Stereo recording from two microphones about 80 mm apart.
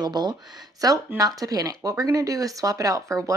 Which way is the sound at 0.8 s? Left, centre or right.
Right.